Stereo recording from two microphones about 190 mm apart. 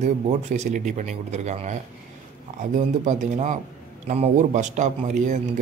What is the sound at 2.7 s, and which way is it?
A man's voice, 40° right (ahead or behind).